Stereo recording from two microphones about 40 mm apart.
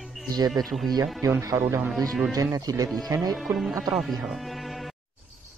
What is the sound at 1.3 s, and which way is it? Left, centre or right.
Speech, right.